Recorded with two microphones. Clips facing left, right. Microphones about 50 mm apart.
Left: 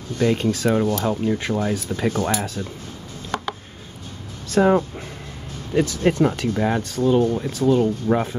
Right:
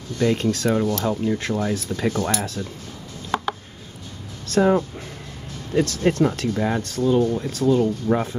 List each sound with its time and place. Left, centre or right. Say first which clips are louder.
0.2 s speech: left 1 dB; centre
4.6 s speech: left 1 dB; left
7.0 s speech: left 1 dB; left
7.3 s speech: left 1 dB; centre
8.1 s speech: left 1 dB; centre